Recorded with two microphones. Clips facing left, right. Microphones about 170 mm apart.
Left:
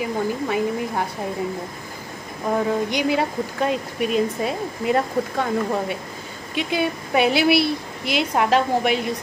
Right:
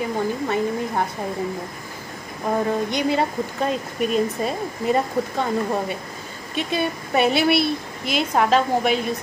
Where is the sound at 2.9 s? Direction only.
10° left (ahead or behind).